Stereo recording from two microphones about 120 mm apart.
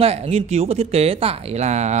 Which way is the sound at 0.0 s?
60° right (ahead or behind).